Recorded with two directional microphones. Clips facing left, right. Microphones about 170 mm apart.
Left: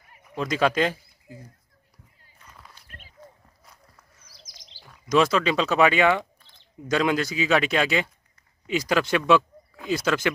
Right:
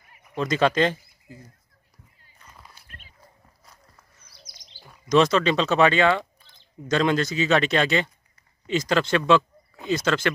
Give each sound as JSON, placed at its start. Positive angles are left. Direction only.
{"t": 0.4, "sound": "speech", "side_deg": 5}
{"t": 2.4, "sound": "walk", "side_deg": -10}
{"t": 3.2, "sound": "a sound", "side_deg": 20}
{"t": 5.0, "sound": "speech", "side_deg": 5}